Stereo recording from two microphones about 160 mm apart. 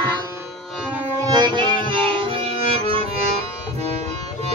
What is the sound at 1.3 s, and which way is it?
Music, 30° right (ahead or behind).